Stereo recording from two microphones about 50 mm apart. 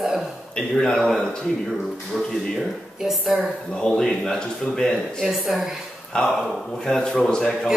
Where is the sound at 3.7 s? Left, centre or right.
Centre.